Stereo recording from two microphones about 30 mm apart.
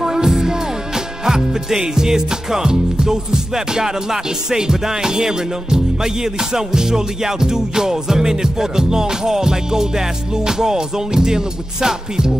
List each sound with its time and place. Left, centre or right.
0.0 s music: centre